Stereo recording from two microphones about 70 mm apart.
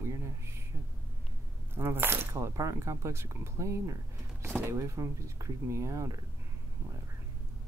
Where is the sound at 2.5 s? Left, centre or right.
Right.